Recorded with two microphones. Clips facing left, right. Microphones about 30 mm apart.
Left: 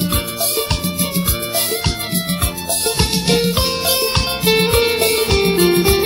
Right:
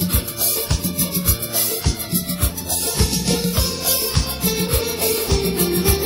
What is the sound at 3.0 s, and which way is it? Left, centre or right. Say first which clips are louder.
Music: left 4 dB; left.